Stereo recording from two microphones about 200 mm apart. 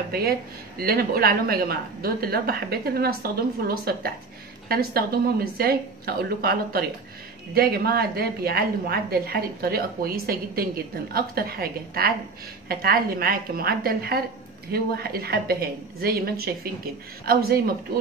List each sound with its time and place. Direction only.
0.1 s a woman's voice: 50° right (ahead or behind)